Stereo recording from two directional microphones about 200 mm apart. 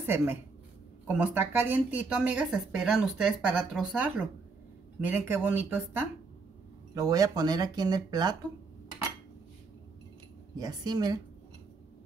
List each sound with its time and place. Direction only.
0.0 s speech: 10° right (ahead or behind)
10.6 s speech: 20° right (ahead or behind)